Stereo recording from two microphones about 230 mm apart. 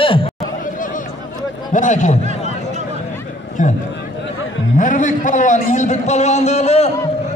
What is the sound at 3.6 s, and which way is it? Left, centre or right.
A man's voice, left.